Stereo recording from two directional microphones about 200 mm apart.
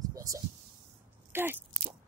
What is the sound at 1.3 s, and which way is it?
Speech, 10° right (ahead or behind).